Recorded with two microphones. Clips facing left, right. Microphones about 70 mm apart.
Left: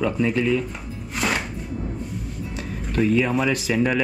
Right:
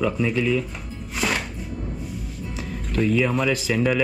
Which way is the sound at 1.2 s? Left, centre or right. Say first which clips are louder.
Left 1 dB; centre.